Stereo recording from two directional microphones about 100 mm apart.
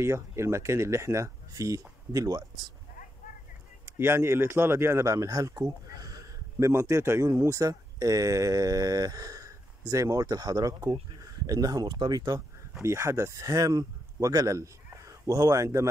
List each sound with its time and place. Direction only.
0.0 s speech: 30° right (ahead or behind)
4.0 s a man's voice: 25° right (ahead or behind)
6.7 s speech: 25° right (ahead or behind)